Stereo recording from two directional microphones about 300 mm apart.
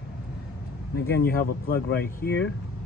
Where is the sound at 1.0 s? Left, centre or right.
Left.